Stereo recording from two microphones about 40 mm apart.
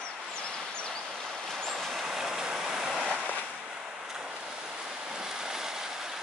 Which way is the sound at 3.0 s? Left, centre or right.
Right.